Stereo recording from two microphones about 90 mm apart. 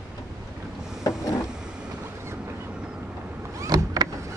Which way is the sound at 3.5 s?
45° right (ahead or behind).